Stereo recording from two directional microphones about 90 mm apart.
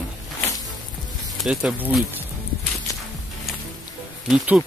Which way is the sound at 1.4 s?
5° right (ahead or behind).